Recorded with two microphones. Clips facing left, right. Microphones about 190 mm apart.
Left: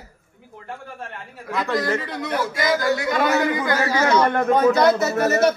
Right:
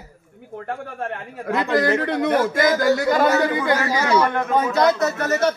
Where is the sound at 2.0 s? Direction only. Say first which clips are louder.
Right 6 dB; 55° right (ahead or behind); by 3.6 s 35° right (ahead or behind).